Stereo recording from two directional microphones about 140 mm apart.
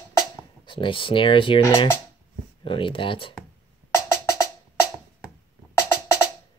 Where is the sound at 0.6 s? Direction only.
35° left (ahead or behind).